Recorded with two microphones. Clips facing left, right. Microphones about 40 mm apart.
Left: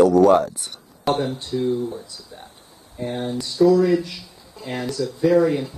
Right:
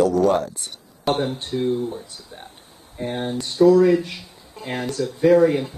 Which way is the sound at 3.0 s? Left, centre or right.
Right.